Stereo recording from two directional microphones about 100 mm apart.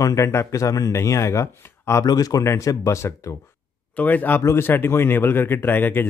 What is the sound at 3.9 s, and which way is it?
A man's voice, 15° left (ahead or behind).